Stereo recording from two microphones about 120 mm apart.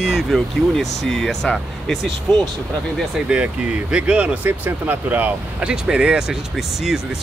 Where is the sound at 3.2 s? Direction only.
10° right (ahead or behind).